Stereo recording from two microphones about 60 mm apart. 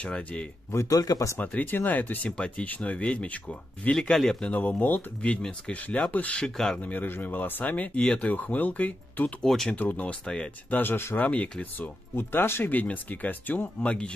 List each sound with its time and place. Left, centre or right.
0.0 s speech: centre
0.8 s speech: left
1.4 s speech: left
4.5 s speech: left
6.4 s speech: centre
6.8 s speech: left
7.6 s speech: left
9.4 s speech: centre
9.8 s speech: left
10.2 s speech: centre
10.7 s speech: left
11.1 s speech: left
11.8 s speech: left
12.7 s speech: left